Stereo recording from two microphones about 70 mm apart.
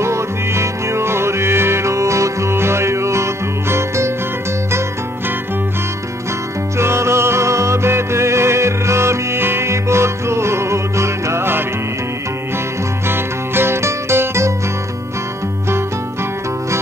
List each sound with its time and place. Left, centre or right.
0.0 s music: right
6.8 s music: right
13.1 s music: right